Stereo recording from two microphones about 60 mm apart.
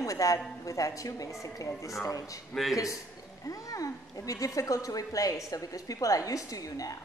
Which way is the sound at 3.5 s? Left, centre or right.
Left.